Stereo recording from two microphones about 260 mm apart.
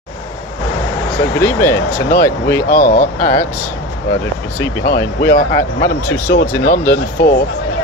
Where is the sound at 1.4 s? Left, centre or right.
Centre.